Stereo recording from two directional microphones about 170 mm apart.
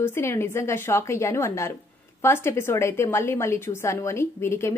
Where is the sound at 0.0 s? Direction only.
15° left (ahead or behind).